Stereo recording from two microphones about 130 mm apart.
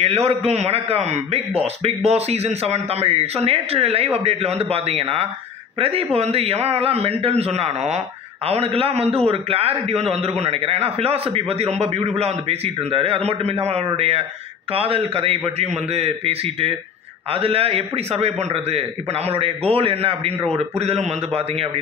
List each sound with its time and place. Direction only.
0.0 s a man's voice: 55° right (ahead or behind)